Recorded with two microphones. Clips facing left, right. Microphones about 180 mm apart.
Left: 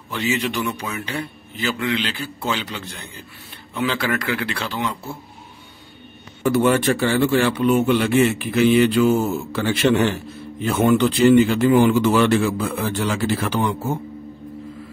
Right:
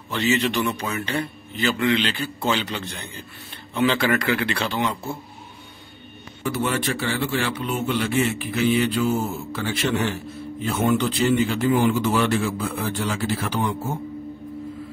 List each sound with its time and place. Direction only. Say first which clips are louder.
0.1 s a man's voice: right 1 dB; 10° left (ahead or behind)
6.4 s a man's voice: left 7 dB; 50° left (ahead or behind); by 13.7 s 85° left